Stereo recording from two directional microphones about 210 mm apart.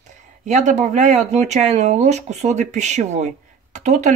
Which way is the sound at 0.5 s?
35° right (ahead or behind).